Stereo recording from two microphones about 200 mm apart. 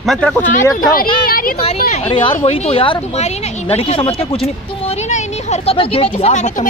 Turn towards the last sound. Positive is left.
turn(degrees=35)  # may be behind; listen again after turning